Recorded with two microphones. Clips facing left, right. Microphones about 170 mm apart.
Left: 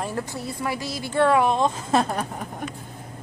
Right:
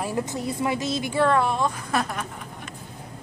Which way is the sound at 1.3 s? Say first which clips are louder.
Left 3 dB; 20° left (ahead or behind).